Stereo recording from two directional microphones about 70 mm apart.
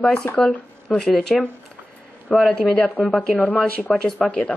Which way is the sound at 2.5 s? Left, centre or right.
Centre.